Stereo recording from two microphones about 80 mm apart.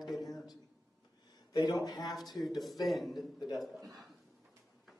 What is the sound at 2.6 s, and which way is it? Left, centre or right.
A man's voice, centre.